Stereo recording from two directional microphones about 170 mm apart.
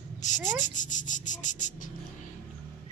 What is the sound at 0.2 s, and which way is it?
Speech, 45° left (ahead or behind).